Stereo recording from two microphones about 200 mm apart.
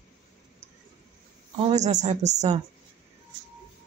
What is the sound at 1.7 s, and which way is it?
Speech, 35° right (ahead or behind).